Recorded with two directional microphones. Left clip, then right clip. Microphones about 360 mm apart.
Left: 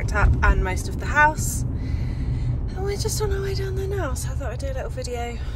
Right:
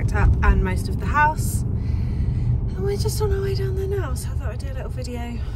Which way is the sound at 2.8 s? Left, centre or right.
Centre.